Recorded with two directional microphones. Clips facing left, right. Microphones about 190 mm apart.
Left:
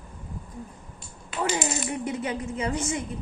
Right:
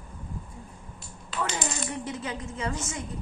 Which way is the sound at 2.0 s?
20° left (ahead or behind).